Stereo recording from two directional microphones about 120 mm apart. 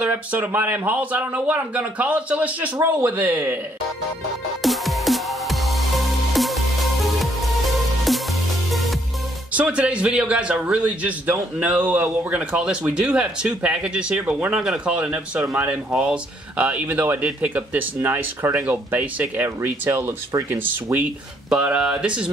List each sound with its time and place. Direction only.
0.0 s a man's voice: 15° right (ahead or behind)
4.6 s music: centre (ahead or behind)
9.5 s a man's voice: 10° right (ahead or behind)